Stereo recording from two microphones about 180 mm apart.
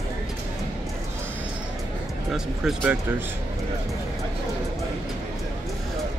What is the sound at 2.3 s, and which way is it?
Speech, centre (ahead or behind).